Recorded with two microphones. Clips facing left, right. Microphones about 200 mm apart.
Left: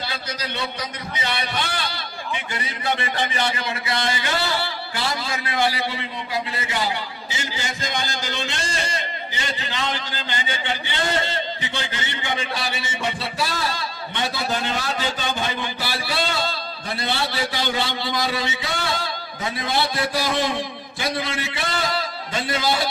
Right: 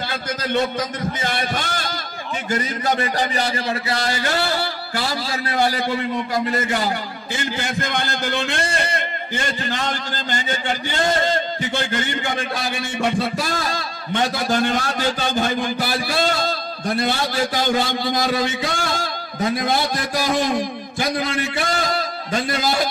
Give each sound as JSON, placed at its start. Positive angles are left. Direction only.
{"t": 1.1, "sound": "a man's voice", "side_deg": -45}